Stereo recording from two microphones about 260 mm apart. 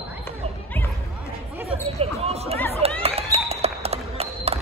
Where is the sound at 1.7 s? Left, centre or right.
Right.